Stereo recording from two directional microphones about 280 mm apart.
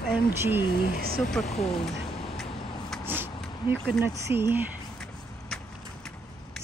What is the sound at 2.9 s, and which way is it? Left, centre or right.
Speech, centre.